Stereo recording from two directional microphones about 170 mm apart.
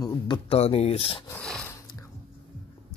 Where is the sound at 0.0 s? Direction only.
30° left (ahead or behind).